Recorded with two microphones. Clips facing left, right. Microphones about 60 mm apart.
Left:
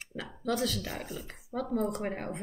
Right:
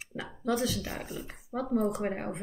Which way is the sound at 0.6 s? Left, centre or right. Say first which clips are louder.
Right 1 dB; centre.